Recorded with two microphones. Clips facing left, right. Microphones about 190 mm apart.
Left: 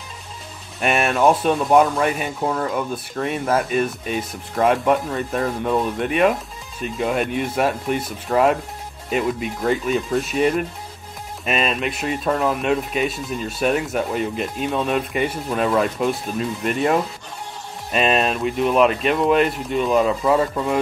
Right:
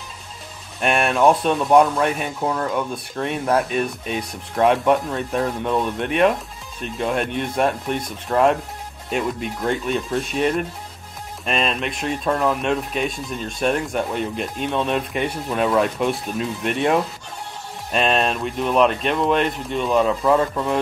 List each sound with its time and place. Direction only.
0.7 s speech: centre (ahead or behind)